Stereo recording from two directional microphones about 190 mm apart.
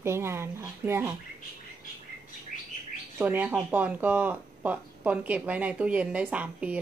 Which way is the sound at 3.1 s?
10° right (ahead or behind).